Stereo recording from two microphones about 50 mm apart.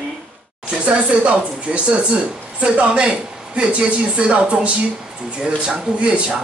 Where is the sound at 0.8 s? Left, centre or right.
Right.